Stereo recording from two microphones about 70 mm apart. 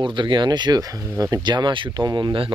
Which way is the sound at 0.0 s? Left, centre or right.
Right.